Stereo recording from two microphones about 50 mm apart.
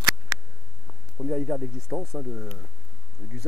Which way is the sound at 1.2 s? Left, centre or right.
Centre.